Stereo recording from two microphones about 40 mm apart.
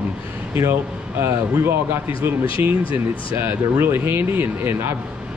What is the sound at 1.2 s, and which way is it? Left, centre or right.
Speech, right.